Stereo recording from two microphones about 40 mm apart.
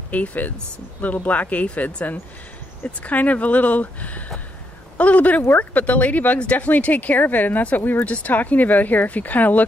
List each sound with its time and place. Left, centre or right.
0.1 s speech: left